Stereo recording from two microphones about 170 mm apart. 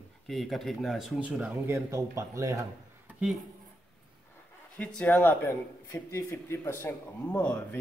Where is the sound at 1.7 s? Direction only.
15° right (ahead or behind).